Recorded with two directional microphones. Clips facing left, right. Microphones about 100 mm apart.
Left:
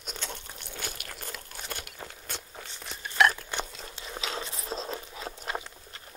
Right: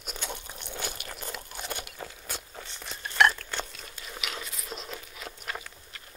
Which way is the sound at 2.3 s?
Centre (ahead or behind).